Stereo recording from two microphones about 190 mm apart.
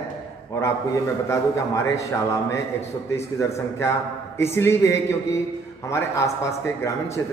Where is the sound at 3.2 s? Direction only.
15° left (ahead or behind).